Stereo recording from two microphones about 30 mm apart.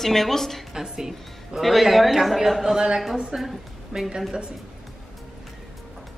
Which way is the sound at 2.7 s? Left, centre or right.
Right.